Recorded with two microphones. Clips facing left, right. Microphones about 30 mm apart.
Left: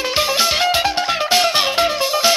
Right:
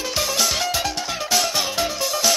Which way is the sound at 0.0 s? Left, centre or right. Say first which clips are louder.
Left 5 dB; left.